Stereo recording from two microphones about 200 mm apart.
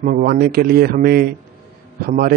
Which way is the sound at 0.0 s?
45° right (ahead or behind).